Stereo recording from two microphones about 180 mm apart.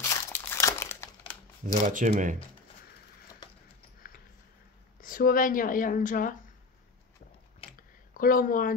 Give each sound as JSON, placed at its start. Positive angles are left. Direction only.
{"t": 0.3, "sound": "crumpling", "side_deg": 15}
{"t": 1.7, "sound": "speech", "side_deg": -45}
{"t": 4.0, "sound": "a sound", "side_deg": 55}
{"t": 5.0, "sound": "speech", "side_deg": 50}
{"t": 7.6, "sound": "a sound", "side_deg": 30}
{"t": 8.1, "sound": "speech", "side_deg": 50}